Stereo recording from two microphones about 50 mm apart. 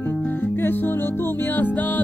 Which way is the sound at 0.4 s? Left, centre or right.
Left.